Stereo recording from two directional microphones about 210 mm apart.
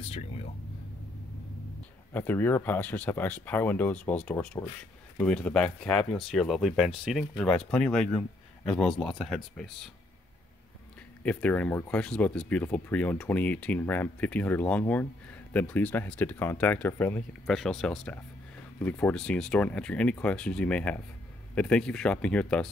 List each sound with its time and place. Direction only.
2.1 s speech: 10° left (ahead or behind)
11.2 s speech: 5° left (ahead or behind)